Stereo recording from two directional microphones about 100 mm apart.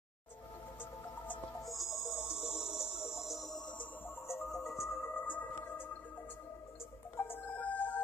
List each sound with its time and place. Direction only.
1.7 s music: centre (ahead or behind)
4.3 s music: 30° left (ahead or behind)
7.2 s music: 20° left (ahead or behind)